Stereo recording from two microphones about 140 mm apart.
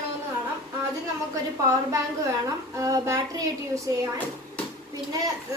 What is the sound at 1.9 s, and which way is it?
A child's voice, 25° right (ahead or behind).